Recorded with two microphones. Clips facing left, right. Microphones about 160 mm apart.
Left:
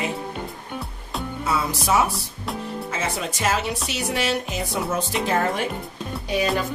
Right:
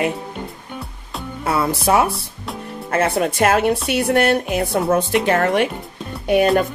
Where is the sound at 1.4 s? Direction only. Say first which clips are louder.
Right 6 dB; 60° right (ahead or behind).